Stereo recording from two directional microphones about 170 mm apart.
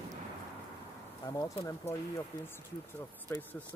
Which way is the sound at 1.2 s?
20° left (ahead or behind).